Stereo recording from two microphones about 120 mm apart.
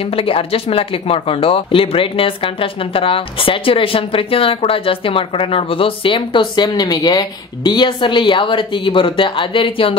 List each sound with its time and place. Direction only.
0.0 s speech: 50° left (ahead or behind)